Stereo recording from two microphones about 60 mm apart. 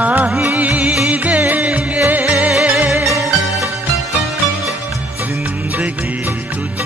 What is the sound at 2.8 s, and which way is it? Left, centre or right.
Music, right.